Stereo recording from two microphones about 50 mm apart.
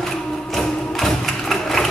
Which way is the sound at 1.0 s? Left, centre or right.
Centre.